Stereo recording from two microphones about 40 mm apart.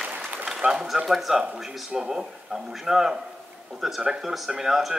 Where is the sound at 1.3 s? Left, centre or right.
Centre.